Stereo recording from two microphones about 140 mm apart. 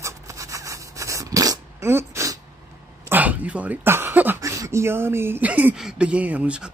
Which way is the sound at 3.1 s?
10° right (ahead or behind).